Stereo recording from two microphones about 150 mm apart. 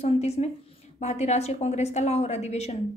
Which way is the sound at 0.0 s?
45° left (ahead or behind).